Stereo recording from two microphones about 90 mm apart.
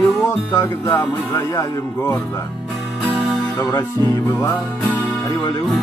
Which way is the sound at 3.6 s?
35° left (ahead or behind).